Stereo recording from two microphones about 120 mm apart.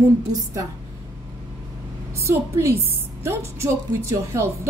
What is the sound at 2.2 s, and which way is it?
A woman's voice, 25° right (ahead or behind).